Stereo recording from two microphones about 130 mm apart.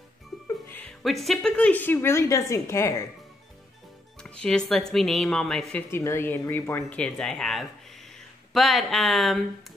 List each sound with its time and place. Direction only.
0.5 s music: 15° left (ahead or behind)
0.8 s a woman's voice: centre (ahead or behind); by 3.1 s 20° left (ahead or behind)
4.2 s a woman's voice: 5° left (ahead or behind)
5.8 s speech: 20° left (ahead or behind)
7.0 s a woman's voice: 5° left (ahead or behind)